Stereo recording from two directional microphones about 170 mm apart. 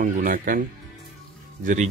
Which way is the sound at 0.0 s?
55° right (ahead or behind).